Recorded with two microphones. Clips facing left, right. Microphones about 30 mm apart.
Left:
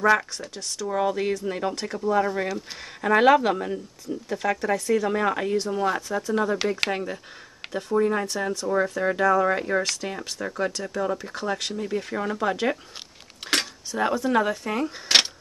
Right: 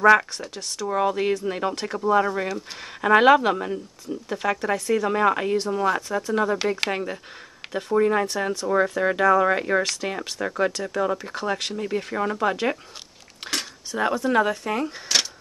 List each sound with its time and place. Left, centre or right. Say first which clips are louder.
0.0 s speech: right 4 dB; centre
2.2 s speech: right 1 dB; centre
3.0 s speech: right 2 dB; centre
7.7 s speech: right 2 dB; right
13.9 s speech: right 1 dB; centre
15.1 s a sound: left 4 dB; left